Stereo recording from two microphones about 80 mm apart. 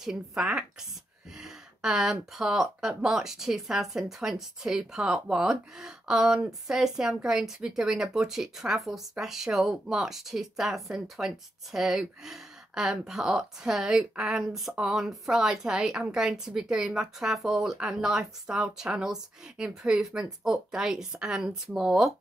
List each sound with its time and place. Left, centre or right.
0.0 s speech: centre